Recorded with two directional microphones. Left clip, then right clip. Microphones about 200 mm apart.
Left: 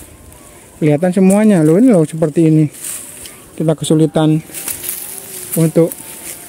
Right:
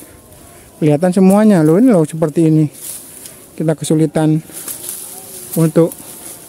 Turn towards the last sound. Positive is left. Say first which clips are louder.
# even
turn(degrees=-15)  # may be behind; listen again after turning